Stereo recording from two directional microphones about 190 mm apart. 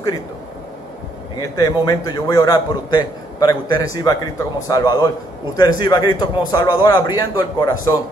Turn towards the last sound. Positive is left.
turn(degrees=20)  # may be behind; listen again after turning